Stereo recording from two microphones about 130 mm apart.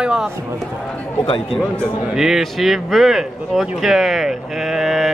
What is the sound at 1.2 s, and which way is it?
Speech, 45° left (ahead or behind).